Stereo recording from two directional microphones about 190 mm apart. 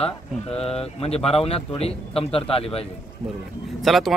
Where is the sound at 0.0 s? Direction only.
30° left (ahead or behind).